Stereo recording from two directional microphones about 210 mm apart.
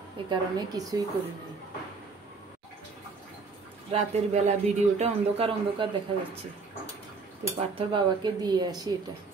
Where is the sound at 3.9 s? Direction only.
30° right (ahead or behind).